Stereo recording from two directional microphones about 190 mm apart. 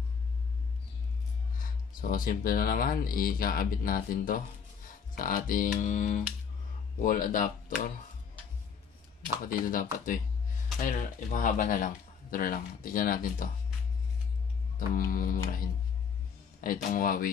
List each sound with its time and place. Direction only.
1.6 s speech: 45° left (ahead or behind)
9.5 s speech: 45° left (ahead or behind)
15.0 s speech: 50° left (ahead or behind)